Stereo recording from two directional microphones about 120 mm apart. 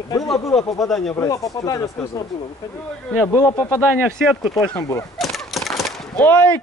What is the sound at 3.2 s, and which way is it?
Speech, 25° left (ahead or behind).